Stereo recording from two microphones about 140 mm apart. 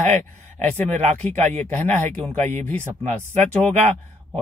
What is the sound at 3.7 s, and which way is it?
Speech, 55° right (ahead or behind).